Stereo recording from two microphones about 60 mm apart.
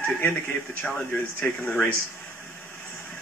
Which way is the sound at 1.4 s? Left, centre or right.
Centre.